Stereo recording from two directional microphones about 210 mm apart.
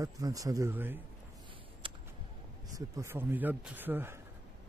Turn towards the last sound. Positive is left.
turn(degrees=-10)  # may be behind; listen again after turning